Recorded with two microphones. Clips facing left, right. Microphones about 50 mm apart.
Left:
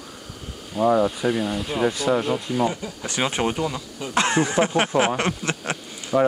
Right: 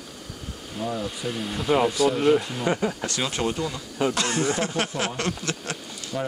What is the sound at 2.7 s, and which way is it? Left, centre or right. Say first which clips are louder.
Speech: right 4 dB; right.